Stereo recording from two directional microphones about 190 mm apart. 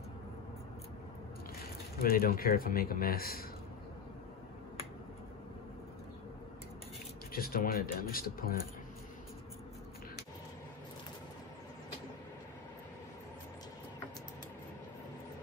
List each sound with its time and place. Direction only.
2.0 s speech: 50° left (ahead or behind)
7.3 s speech: 50° left (ahead or behind)